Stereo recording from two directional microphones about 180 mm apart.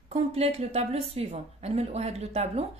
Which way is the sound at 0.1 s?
35° right (ahead or behind).